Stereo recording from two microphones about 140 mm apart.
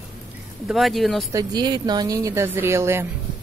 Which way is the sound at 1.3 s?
30° right (ahead or behind).